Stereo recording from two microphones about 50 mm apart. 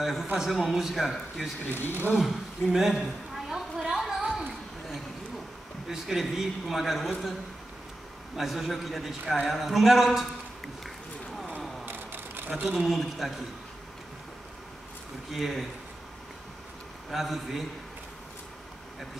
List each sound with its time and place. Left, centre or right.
0.0 s a man's voice: centre
1.7 s speech: left
2.1 s a sound: centre
5.9 s a man's voice: centre
8.4 s a man's voice: centre
11.8 s a sound: right
12.6 s a man's voice: centre
15.3 s a man's voice: centre
17.1 s a man's voice: centre